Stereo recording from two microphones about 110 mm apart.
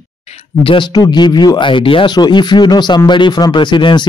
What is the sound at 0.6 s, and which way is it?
Speech, 55° left (ahead or behind).